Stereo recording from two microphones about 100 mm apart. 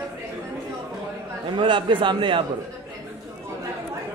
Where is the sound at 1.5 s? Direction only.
55° right (ahead or behind).